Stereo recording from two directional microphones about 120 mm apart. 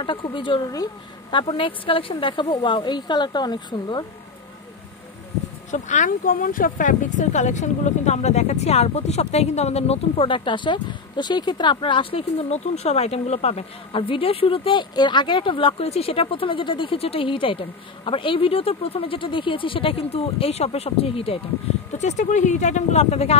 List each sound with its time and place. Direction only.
0.0 s a woman's voice: 45° left (ahead or behind)
5.7 s a woman's voice: 90° left; by 21.4 s 50° left (ahead or behind)
21.9 s speech: 85° left; by 23.3 s 60° left (ahead or behind)